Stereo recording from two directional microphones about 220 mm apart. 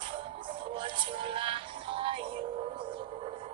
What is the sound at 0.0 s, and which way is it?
Music, 25° right (ahead or behind).